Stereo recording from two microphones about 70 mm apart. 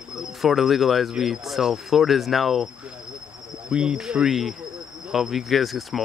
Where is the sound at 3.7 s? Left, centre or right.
Centre.